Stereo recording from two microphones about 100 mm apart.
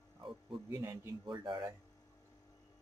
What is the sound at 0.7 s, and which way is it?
Speech, 30° right (ahead or behind).